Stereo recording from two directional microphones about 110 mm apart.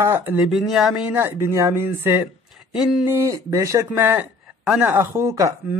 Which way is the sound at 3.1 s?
25° right (ahead or behind).